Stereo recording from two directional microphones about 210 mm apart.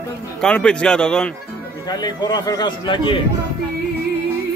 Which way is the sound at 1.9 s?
20° left (ahead or behind).